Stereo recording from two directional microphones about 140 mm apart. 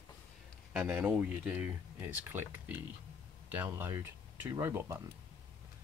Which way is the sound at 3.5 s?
15° right (ahead or behind).